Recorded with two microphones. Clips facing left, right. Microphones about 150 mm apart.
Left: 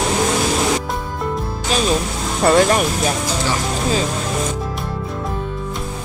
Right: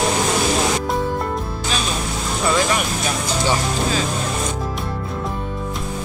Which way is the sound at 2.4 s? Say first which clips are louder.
Left 6 dB; 55° left (ahead or behind).